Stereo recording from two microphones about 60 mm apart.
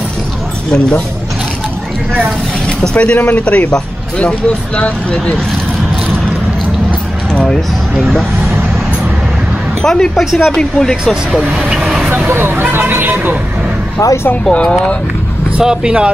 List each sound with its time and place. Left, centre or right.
0.7 s speech: centre
2.8 s speech: centre
3.2 s a man's voice: left
3.4 s speech: centre
8.0 s vehicle: centre
9.8 s speech: centre
12.1 s speech: right
14.5 s speech: centre
15.5 s speech: centre